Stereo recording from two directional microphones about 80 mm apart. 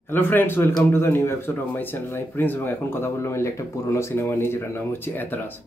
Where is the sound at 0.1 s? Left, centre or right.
Left.